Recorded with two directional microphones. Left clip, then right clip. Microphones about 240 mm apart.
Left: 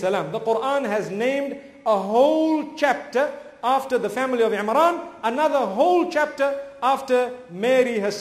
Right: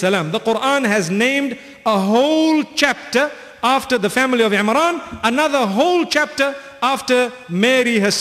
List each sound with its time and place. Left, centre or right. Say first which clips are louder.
0.0 s a man's voice: right 5 dB; right